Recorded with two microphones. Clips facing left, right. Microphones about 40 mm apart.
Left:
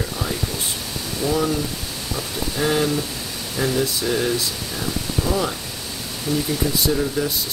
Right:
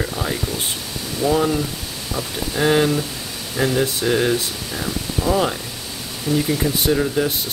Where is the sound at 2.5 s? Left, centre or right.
Right.